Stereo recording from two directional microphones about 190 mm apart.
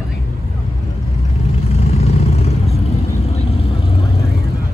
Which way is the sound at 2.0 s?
30° left (ahead or behind).